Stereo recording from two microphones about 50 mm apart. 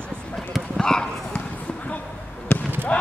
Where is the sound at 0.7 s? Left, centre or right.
Centre.